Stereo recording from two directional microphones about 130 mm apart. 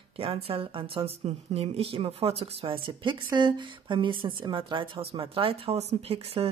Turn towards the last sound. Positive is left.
turn(degrees=-50)  # may be behind; listen again after turning